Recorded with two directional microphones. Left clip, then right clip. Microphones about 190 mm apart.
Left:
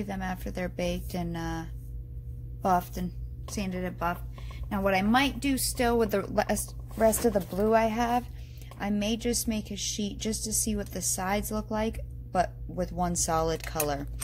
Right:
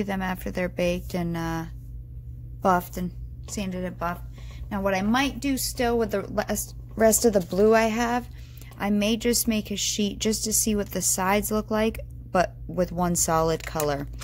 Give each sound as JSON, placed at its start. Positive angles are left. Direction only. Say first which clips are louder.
{"t": 0.0, "sound": "a woman's voice", "louder": "right 6 dB", "side_deg": -25}
{"t": 7.0, "sound": "a woman's voice", "louder": "right 4 dB", "side_deg": -25}